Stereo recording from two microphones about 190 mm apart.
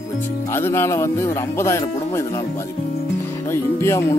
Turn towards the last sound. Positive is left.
turn(degrees=15)  # may be behind; listen again after turning